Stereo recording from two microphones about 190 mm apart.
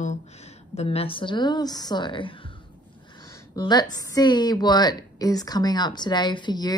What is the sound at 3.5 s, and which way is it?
A woman's voice, 20° left (ahead or behind).